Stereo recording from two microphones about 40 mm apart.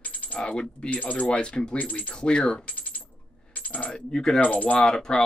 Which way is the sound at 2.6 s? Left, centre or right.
Left.